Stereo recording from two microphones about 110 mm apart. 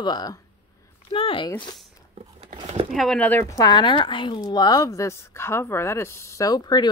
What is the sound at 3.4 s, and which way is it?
A woman's voice, 35° left (ahead or behind).